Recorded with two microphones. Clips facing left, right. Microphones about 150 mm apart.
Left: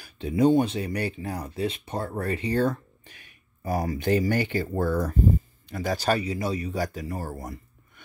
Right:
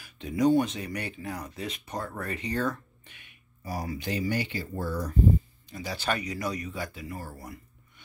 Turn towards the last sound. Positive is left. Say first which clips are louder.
# left 6 dB
turn(degrees=40)  # may be behind; listen again after turning